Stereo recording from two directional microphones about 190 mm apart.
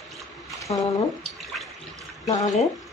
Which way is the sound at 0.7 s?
30° left (ahead or behind).